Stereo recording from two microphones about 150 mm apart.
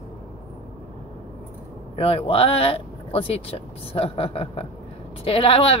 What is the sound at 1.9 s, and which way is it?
Speech, 40° left (ahead or behind).